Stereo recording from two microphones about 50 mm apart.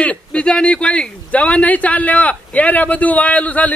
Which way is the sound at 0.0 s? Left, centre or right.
Left.